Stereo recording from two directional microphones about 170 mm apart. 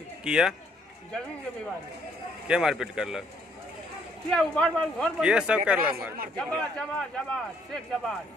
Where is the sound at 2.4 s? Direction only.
5° right (ahead or behind).